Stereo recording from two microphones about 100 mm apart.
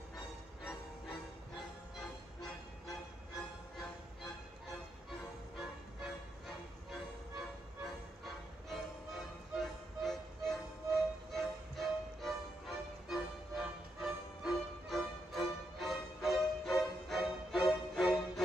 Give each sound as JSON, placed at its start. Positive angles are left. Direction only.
{"t": 2.0, "sound": "music", "side_deg": 5}
{"t": 7.8, "sound": "music", "side_deg": 0}